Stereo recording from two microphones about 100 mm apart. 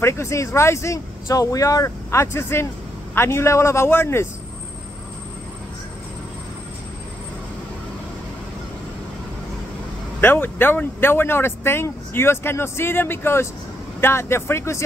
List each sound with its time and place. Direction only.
0.0 s speech: 30° left (ahead or behind)
10.2 s speech: 20° left (ahead or behind)